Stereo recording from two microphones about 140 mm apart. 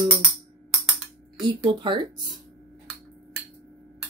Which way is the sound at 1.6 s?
35° right (ahead or behind).